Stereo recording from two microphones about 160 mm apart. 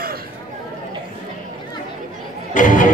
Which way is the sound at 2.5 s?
55° left (ahead or behind).